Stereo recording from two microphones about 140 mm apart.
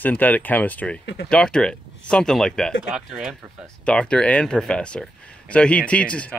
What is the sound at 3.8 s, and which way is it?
Speech, 5° left (ahead or behind).